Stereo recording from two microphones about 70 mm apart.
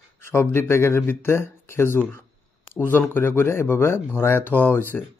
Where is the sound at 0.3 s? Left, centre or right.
Left.